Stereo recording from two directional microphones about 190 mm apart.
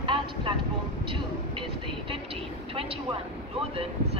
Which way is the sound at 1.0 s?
25° right (ahead or behind).